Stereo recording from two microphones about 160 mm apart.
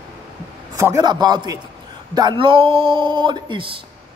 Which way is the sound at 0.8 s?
20° right (ahead or behind).